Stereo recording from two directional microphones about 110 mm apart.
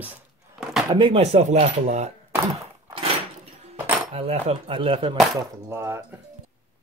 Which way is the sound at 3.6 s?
65° right (ahead or behind).